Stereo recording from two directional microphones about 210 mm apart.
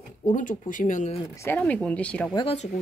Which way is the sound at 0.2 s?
40° left (ahead or behind).